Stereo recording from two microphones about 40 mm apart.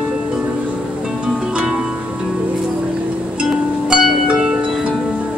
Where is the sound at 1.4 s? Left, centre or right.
Right.